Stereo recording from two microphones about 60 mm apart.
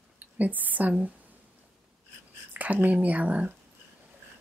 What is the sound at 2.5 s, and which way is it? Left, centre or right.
Speech, right.